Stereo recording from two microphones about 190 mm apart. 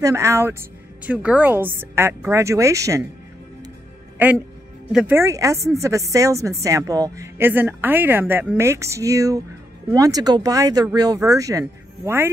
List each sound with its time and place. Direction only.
0.0 s a woman's voice: 15° right (ahead or behind)
4.2 s a woman's voice: 10° right (ahead or behind)